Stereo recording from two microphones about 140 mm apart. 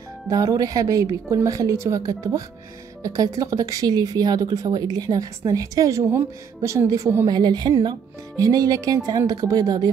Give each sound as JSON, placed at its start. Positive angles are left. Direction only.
{"t": 0.3, "sound": "speech", "side_deg": -25}